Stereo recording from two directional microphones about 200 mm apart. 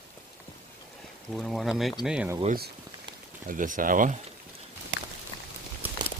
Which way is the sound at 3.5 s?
40° right (ahead or behind).